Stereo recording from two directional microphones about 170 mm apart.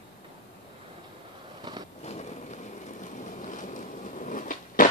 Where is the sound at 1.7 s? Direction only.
25° right (ahead or behind).